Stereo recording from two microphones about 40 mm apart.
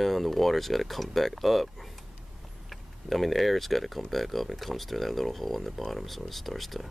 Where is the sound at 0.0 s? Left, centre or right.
Centre.